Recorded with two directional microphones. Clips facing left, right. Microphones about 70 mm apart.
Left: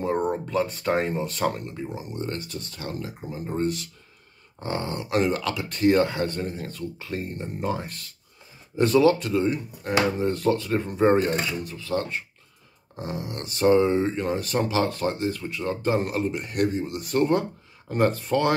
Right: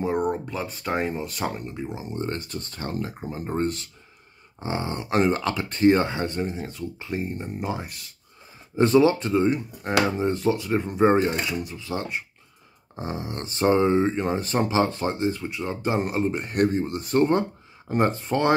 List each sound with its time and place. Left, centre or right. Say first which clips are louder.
0.0 s speech: even; centre
1.5 s speech: even; centre
2.1 s speech: right 3 dB; right
4.6 s speech: even; centre
8.7 s speech: right 1 dB; right
12.9 s speech: right 1 dB; right
16.3 s speech: right 2 dB; right